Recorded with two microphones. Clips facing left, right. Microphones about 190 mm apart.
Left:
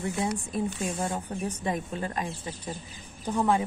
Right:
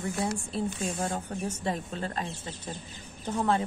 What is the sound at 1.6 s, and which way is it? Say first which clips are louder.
Speech: left 2 dB; 15° left (ahead or behind).